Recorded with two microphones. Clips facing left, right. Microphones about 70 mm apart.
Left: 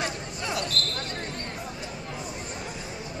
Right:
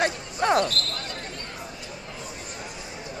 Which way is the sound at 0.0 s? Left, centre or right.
Right.